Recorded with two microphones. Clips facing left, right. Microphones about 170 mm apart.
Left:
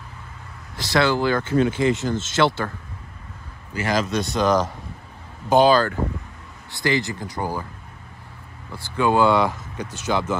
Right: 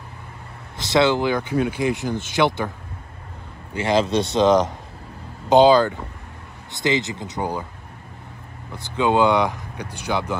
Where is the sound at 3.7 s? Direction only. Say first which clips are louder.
Right 3 dB; 25° right (ahead or behind).